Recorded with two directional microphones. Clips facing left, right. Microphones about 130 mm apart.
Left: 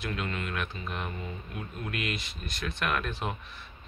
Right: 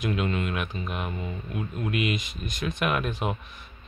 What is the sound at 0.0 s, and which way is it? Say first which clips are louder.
Speech: right 7 dB; 20° right (ahead or behind).